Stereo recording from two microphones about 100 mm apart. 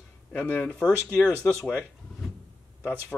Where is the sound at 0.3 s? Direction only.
15° left (ahead or behind).